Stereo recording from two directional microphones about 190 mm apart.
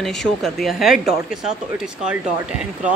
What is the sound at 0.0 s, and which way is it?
A woman's voice, centre (ahead or behind).